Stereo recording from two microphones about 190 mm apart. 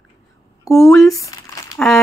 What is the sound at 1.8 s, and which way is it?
Speech, 5° left (ahead or behind).